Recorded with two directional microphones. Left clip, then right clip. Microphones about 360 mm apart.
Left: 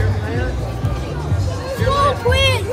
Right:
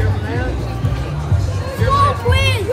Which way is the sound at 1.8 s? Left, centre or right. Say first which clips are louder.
Right 1 dB; left.